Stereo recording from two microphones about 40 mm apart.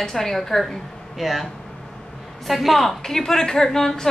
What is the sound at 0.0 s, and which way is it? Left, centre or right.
A woman's voice, centre.